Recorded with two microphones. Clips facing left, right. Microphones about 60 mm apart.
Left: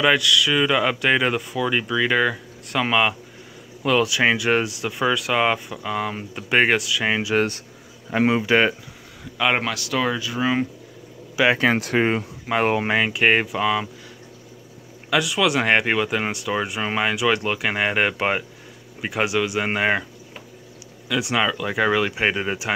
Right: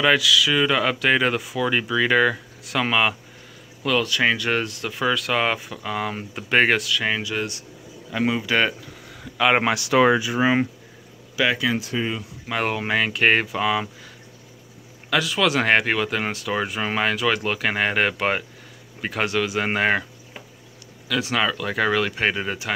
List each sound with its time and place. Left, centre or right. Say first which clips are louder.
0.0 s speech: even; centre
3.8 s speech: left 2 dB; centre
4.6 s speech: left 1 dB; centre
7.1 s speech: left 6 dB; centre
7.3 s speech: left 7 dB; left
8.1 s speech: left 4 dB; left
9.2 s speech: right 2 dB; centre
9.6 s speech: right 6 dB; right
11.5 s speech: left 4 dB; left
11.8 s speech: left 6 dB; left
12.4 s speech: left 4 dB; centre
15.0 s speech: left 1 dB; centre